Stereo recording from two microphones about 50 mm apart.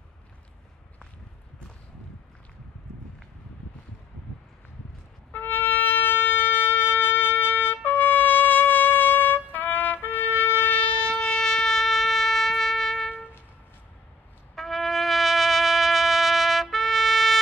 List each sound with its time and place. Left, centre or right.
5.3 s shofar: left; by 13.1 s centre
14.5 s trumpet: centre